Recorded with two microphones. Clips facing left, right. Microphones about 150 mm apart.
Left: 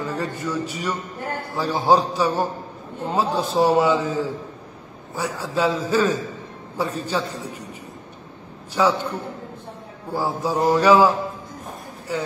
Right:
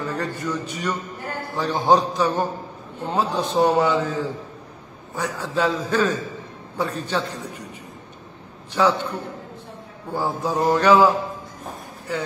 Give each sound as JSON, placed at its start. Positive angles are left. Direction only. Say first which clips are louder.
{"t": 0.1, "sound": "a man's voice", "louder": "even", "side_deg": 10}
{"t": 8.7, "sound": "a man's voice", "louder": "even", "side_deg": 10}